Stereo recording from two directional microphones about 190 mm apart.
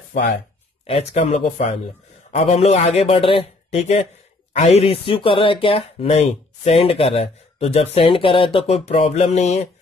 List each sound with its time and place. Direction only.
0.8 s speech: 30° left (ahead or behind)